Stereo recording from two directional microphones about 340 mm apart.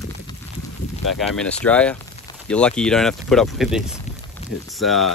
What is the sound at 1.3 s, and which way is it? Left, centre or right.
Speech, centre.